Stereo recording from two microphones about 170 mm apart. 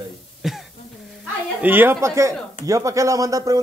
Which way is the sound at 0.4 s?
Centre (ahead or behind).